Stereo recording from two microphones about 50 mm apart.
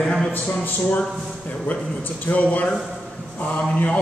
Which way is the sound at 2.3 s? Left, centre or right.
Left.